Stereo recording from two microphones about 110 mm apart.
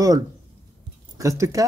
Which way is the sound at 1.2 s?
30° right (ahead or behind).